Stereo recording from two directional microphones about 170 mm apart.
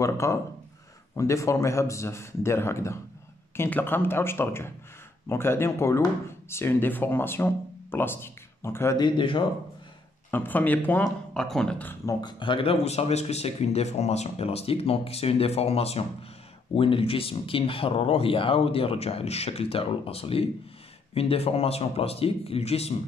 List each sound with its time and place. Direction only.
0.0 s speech: 15° left (ahead or behind)
10.3 s speech: 10° left (ahead or behind)
12.2 s speech: 25° left (ahead or behind)